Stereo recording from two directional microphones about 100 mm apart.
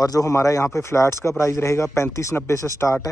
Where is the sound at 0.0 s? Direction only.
35° left (ahead or behind).